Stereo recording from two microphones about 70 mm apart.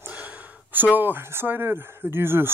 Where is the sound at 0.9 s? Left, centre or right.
Right.